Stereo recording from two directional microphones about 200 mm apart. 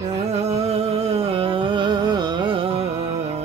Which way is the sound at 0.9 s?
30° right (ahead or behind).